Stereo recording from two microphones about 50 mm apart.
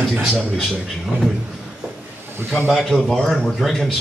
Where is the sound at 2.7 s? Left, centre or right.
Centre.